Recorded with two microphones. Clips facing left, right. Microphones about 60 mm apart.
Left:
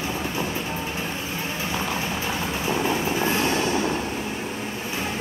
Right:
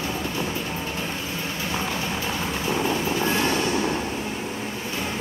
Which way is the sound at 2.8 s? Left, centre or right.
Left.